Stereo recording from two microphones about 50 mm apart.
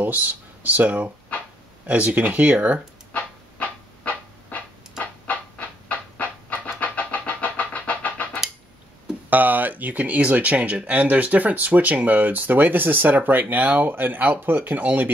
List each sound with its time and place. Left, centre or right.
0.0 s speech: right
3.1 s a sound: left
5.2 s train: left
9.3 s speech: right